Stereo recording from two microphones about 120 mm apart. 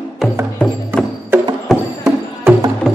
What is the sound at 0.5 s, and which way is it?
Music, 5° left (ahead or behind).